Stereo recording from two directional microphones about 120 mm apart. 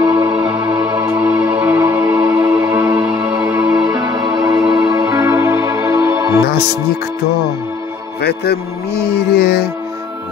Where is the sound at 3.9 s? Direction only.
35° right (ahead or behind).